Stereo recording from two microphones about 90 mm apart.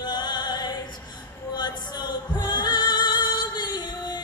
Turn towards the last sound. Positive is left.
turn(degrees=50)  # may be behind; listen again after turning